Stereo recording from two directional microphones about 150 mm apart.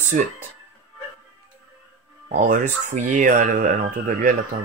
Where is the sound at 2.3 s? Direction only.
55° right (ahead or behind).